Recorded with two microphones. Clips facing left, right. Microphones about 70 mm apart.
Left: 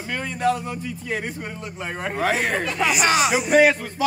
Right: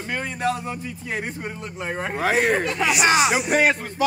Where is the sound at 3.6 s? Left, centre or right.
Right.